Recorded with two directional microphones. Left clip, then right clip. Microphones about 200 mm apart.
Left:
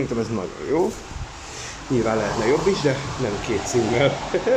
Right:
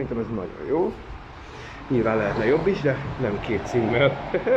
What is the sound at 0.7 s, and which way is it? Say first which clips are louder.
Speech: left 2 dB; 25° left (ahead or behind).